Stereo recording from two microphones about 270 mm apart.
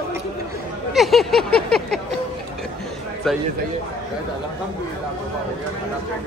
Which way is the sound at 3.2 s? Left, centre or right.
Centre.